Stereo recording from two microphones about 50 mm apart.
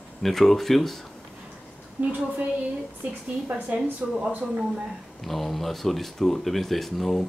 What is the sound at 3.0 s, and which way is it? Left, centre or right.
A woman's voice, right.